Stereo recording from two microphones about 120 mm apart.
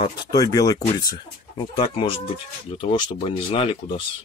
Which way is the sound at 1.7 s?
45° left (ahead or behind).